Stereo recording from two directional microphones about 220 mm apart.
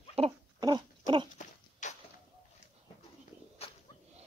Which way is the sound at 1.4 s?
35° left (ahead or behind).